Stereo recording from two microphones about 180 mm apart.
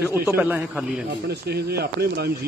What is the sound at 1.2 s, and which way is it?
Speech, 60° right (ahead or behind).